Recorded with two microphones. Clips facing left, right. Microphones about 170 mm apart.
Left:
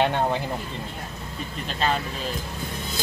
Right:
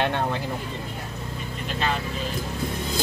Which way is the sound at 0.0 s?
15° left (ahead or behind).